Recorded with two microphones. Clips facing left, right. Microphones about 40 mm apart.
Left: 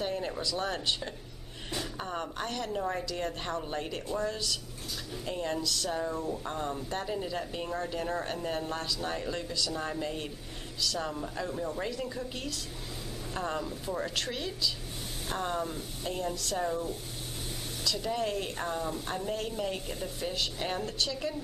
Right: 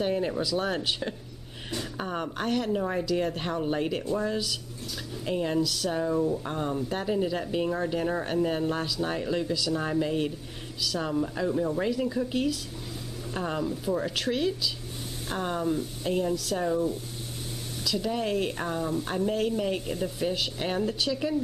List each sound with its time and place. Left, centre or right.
0.0 s speech: centre
0.3 s speech: centre
9.5 s speech: centre
9.8 s speech: centre
13.7 s speech: centre
17.8 s speech: centre
18.2 s speech: centre